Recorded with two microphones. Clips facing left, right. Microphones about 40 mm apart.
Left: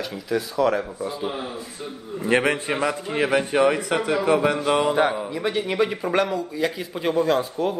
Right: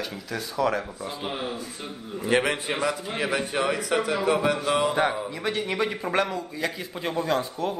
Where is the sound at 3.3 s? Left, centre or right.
Left.